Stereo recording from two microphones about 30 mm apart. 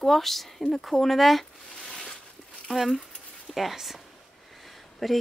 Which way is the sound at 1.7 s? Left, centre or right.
Centre.